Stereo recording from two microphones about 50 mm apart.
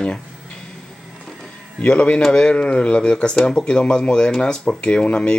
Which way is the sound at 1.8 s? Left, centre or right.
Left.